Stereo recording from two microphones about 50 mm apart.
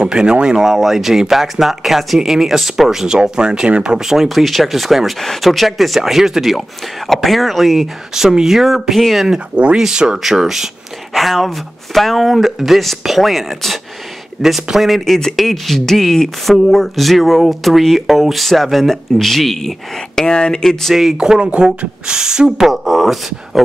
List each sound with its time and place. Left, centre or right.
0.0 s speech: centre
4.0 s speech: centre
9.8 s speech: centre
20.2 s speech: centre
21.2 s speech: centre
22.7 s speech: centre